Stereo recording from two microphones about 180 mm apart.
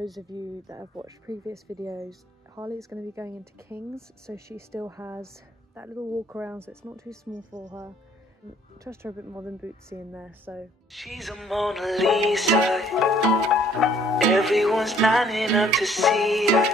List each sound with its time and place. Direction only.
0.3 s speech: 25° right (ahead or behind)
8.8 s speech: 15° right (ahead or behind)